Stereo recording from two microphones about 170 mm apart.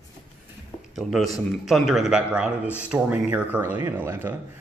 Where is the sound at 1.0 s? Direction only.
Centre (ahead or behind).